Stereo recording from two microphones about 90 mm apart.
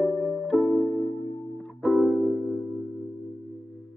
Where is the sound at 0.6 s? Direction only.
5° right (ahead or behind).